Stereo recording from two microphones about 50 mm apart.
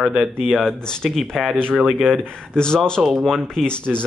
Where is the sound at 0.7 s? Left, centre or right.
Centre.